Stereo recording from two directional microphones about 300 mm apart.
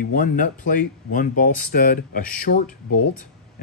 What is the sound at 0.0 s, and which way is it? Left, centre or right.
Speech, left.